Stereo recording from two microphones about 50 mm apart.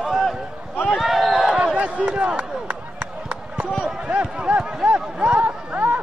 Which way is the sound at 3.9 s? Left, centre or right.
Right.